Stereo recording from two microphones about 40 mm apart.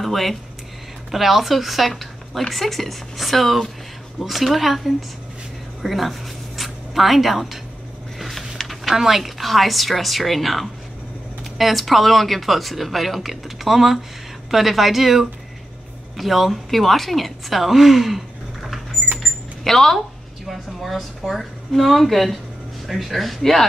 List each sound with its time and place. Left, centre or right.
0.0 s speech: centre
5.8 s a sound: centre
8.9 s a woman's voice: centre
19.1 s cash register: centre
20.4 s a sound: centre
21.3 s speech: centre